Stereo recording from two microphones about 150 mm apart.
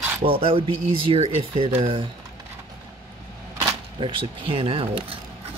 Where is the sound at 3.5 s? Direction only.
35° right (ahead or behind).